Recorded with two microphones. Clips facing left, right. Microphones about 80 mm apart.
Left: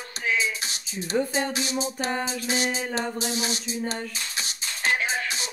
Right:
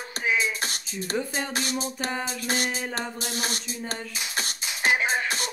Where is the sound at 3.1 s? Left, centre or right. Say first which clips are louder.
Left 3 dB; right.